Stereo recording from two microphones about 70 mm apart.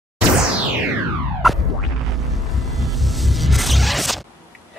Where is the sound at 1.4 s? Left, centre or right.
Centre.